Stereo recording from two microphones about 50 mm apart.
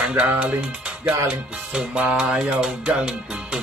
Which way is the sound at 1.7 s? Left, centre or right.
Right.